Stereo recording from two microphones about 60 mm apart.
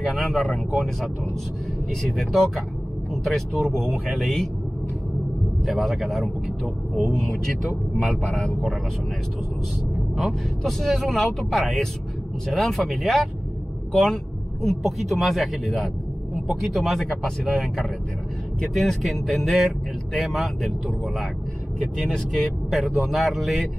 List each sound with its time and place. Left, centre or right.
0.1 s speech: centre
5.7 s speech: centre
7.0 s speech: centre
10.1 s speech: centre
22.1 s speech: centre